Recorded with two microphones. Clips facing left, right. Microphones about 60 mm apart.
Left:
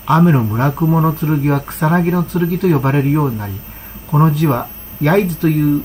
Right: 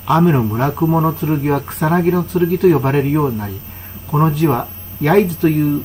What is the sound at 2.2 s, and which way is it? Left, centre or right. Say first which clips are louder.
Speech: right 3 dB; left.